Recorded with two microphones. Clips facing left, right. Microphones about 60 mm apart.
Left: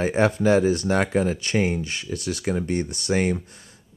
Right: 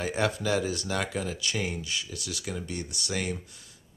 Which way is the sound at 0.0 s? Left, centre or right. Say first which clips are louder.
Left 8 dB; left.